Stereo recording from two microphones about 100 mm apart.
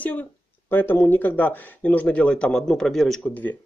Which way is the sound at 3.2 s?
15° left (ahead or behind).